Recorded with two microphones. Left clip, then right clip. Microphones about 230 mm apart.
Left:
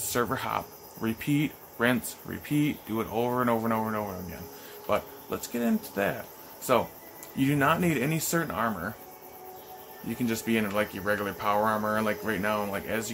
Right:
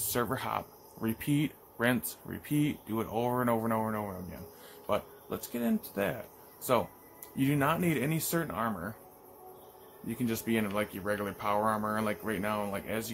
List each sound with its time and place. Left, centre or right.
0.1 s speech: centre
10.0 s speech: centre